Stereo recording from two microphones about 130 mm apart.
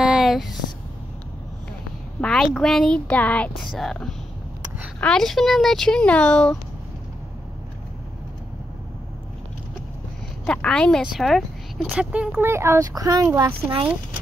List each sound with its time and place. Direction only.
0.0 s a sound: 5° right (ahead or behind)
2.2 s speech: 5° left (ahead or behind)
10.4 s speech: 10° left (ahead or behind); by 12.3 s 10° right (ahead or behind)
12.4 s a child's voice: 20° right (ahead or behind)